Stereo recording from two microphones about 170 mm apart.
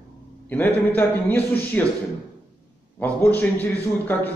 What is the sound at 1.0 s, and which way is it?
Speech, 10° left (ahead or behind).